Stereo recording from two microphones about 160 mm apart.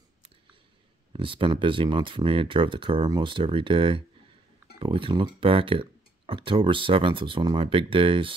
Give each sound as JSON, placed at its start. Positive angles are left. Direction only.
{"t": 1.1, "sound": "speech", "side_deg": -30}